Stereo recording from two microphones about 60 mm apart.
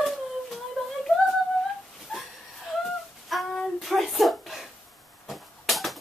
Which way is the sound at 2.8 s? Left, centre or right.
Centre.